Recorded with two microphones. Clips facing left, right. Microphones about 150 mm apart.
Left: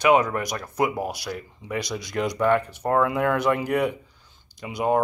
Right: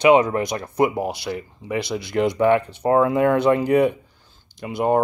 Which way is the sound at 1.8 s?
60° right (ahead or behind).